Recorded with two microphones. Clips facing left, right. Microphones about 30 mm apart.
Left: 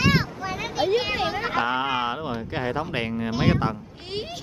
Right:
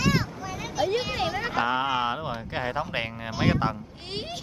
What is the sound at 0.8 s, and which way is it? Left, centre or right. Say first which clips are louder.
Speech: left 2 dB; left.